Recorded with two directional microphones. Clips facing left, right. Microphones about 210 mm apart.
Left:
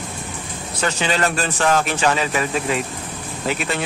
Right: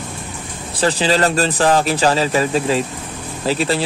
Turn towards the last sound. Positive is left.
turn(degrees=-35)  # may be behind; listen again after turning